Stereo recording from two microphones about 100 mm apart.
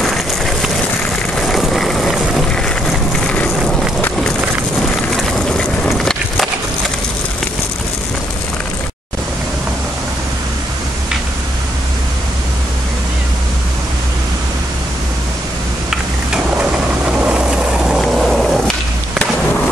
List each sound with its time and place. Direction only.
0.0 s vehicle: centre (ahead or behind)
1.4 s a sound: centre (ahead or behind)
3.3 s vehicle: 10° left (ahead or behind)
5.1 s skateboard: centre (ahead or behind)
17.0 s ratchet: 15° right (ahead or behind)
17.8 s vehicle: 5° right (ahead or behind)